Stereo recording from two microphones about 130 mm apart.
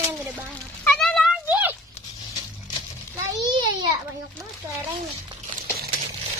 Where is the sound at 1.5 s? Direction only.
15° right (ahead or behind).